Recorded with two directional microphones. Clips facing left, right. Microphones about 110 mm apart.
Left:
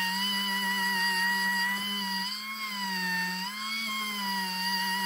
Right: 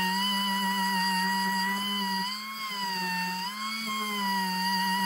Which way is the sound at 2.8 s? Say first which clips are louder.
Right 2 dB; 35° right (ahead or behind).